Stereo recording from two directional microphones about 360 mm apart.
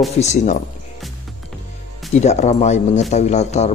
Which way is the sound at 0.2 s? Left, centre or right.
Centre.